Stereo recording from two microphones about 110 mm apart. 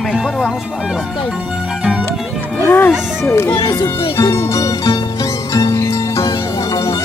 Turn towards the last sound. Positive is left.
turn(degrees=30)  # may be behind; listen again after turning